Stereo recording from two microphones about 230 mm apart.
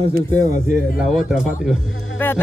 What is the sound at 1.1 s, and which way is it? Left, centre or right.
Speech, centre.